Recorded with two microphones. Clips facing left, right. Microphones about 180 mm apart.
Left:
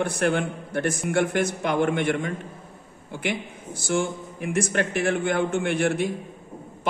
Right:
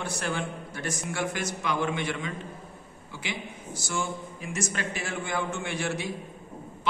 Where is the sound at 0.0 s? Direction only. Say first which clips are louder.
Left 8 dB; 60° left (ahead or behind).